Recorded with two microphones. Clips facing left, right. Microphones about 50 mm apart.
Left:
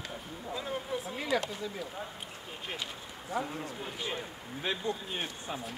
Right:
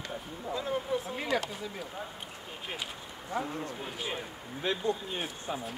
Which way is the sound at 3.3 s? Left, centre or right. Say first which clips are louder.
Right 1 dB; centre.